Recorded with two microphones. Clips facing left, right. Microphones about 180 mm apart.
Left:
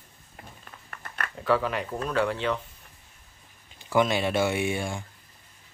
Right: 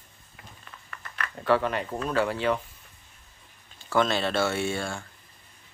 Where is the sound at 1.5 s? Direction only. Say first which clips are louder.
Right 1 dB; centre (ahead or behind).